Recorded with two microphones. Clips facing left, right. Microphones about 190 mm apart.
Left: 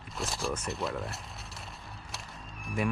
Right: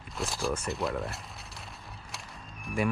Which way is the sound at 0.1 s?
Centre (ahead or behind).